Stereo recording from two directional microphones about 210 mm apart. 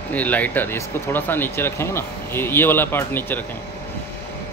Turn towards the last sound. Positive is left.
turn(degrees=10)  # may be behind; listen again after turning